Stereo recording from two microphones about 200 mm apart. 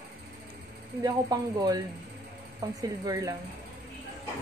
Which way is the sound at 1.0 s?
20° right (ahead or behind).